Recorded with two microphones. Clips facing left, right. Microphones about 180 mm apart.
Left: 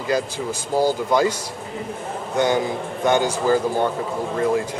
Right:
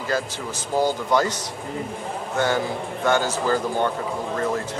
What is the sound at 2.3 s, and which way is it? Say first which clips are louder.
Speech: left 3 dB; 15° left (ahead or behind).